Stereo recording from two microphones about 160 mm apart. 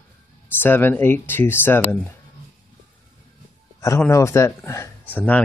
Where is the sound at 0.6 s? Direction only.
15° left (ahead or behind).